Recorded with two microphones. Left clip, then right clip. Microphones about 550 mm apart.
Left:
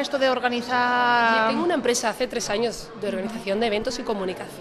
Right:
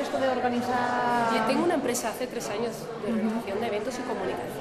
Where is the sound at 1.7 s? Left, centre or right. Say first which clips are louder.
Left 5 dB; left.